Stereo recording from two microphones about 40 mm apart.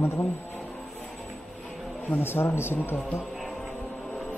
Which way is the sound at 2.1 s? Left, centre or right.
Left.